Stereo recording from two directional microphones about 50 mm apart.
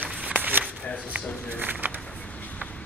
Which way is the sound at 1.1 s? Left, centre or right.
Right.